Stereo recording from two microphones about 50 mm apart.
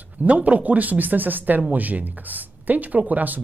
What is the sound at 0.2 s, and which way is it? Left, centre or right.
Speech, right.